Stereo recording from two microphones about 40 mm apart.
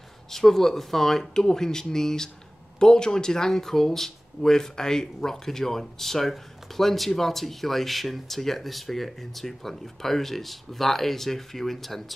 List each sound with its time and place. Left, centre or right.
0.3 s speech: centre